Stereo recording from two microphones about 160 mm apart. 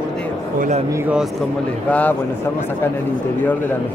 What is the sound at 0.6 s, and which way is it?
Speech, 45° right (ahead or behind).